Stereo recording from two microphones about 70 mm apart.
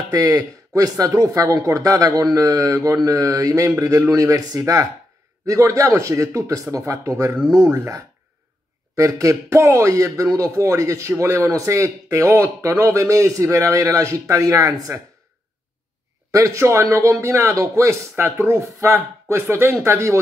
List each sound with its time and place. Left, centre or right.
0.1 s speech: right
8.9 s speech: right
16.3 s speech: right